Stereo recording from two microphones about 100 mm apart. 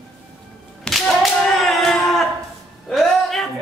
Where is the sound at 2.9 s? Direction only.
Centre (ahead or behind).